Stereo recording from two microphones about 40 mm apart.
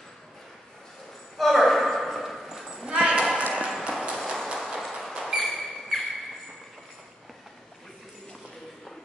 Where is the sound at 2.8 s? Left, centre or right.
Right.